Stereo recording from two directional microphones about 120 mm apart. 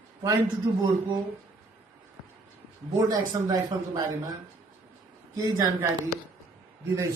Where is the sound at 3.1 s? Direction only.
30° right (ahead or behind).